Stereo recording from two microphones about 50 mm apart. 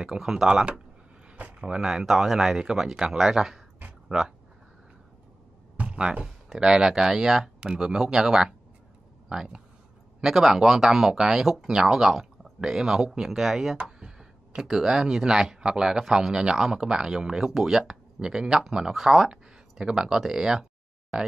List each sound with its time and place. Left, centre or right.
0.0 s speech: centre
1.3 s speech: right
2.0 s speech: centre
5.8 s speech: right; by 13.7 s centre
13.8 s a sound: centre
15.6 s speech: centre